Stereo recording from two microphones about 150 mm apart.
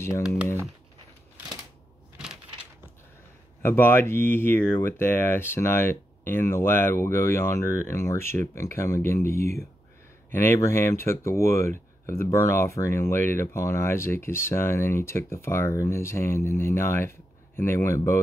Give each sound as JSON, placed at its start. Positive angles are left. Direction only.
{"t": 3.6, "sound": "speech", "side_deg": 15}